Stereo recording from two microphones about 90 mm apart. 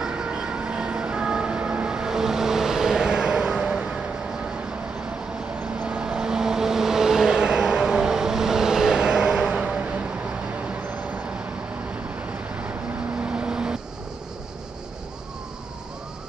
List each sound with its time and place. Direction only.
0.0 s vehicle: 10° right (ahead or behind)
5.6 s vehicle: 15° right (ahead or behind)